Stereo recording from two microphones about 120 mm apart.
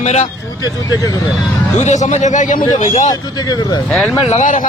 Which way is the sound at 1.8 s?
80° left.